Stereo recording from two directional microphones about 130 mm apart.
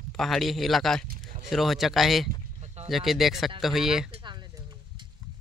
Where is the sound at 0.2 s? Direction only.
Centre (ahead or behind).